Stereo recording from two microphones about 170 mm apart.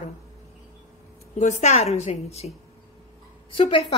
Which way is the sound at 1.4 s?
40° left (ahead or behind).